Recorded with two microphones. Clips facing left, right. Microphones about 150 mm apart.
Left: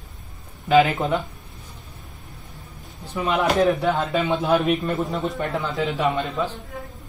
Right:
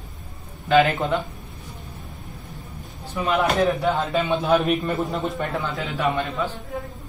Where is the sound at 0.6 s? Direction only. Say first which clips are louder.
Left 1 dB; 5° left (ahead or behind).